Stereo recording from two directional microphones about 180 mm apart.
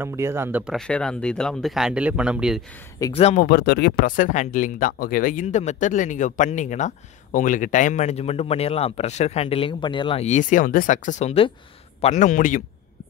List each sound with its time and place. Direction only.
0.0 s speech: 15° right (ahead or behind)
0.7 s speech: 5° left (ahead or behind)
3.0 s speech: 30° left (ahead or behind)
3.3 s speech: 60° left (ahead or behind)